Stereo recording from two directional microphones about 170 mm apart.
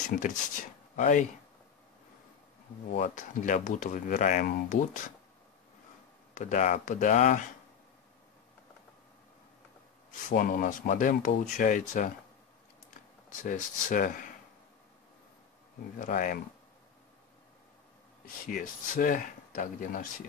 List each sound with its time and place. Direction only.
0.1 s speech: 50° left (ahead or behind)
3.0 s speech: 50° left (ahead or behind)
6.3 s speech: 45° left (ahead or behind)
10.3 s speech: 55° left (ahead or behind)
13.4 s speech: 50° left (ahead or behind)
16.0 s speech: 50° left (ahead or behind)
18.2 s speech: 55° left (ahead or behind)